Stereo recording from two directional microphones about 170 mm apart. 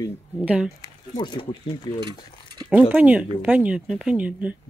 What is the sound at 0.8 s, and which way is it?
Speech, 25° left (ahead or behind).